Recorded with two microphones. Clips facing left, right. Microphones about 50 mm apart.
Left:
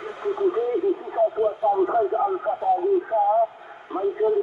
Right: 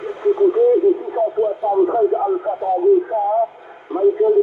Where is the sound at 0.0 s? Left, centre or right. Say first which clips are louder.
Right 8 dB; centre.